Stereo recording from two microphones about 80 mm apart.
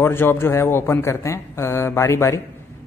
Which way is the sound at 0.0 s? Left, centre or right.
Left.